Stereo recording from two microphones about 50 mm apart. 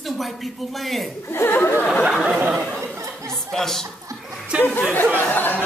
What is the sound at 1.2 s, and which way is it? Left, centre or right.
Speech, left.